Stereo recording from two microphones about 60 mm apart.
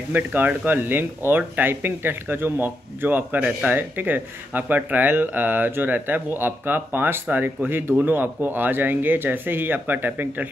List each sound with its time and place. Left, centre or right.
0.1 s speech: right